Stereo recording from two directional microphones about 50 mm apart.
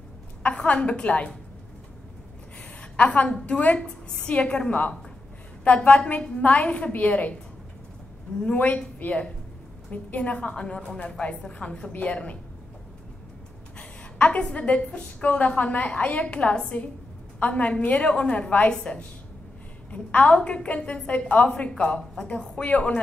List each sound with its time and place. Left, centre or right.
0.4 s a woman's voice: left
2.8 s a woman's voice: left
8.5 s a woman's voice: left
13.7 s a woman's voice: left
15.2 s a woman's voice: left